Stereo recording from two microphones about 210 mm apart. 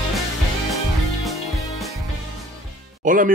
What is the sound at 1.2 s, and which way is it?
Music, centre (ahead or behind).